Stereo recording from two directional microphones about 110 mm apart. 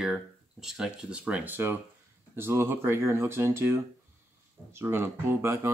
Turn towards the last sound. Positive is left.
turn(degrees=-25)  # may be behind; listen again after turning